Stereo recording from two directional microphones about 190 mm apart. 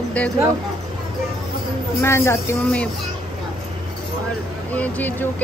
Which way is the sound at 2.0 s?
15° left (ahead or behind).